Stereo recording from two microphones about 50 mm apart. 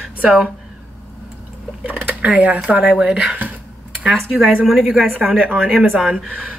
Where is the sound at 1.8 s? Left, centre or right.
Right.